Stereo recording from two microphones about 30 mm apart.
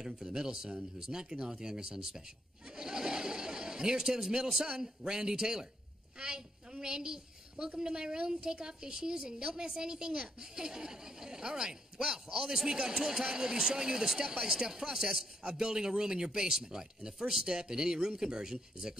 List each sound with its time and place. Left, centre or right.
0.0 s a woman's voice: right